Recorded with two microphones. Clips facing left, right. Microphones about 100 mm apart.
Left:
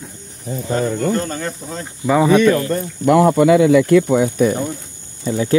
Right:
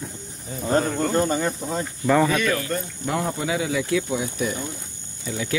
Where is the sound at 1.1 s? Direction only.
15° right (ahead or behind).